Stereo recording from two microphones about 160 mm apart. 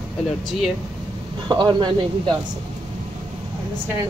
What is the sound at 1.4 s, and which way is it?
Speech, 30° right (ahead or behind).